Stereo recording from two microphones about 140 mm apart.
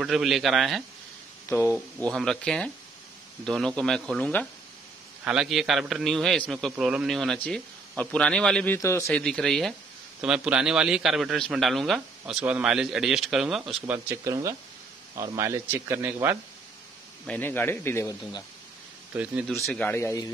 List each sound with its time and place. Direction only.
0.0 s a man's voice: centre (ahead or behind)
1.5 s a man's voice: 15° left (ahead or behind)
2.0 s a man's voice: 5° left (ahead or behind)
5.2 s a man's voice: 5° right (ahead or behind)
8.7 s a man's voice: 20° left (ahead or behind)
9.1 s a man's voice: 5° left (ahead or behind)
13.9 s speech: 20° right (ahead or behind)
17.3 s a man's voice: 15° left (ahead or behind)
19.1 s speech: 10° right (ahead or behind)
19.7 s a man's voice: 15° left (ahead or behind)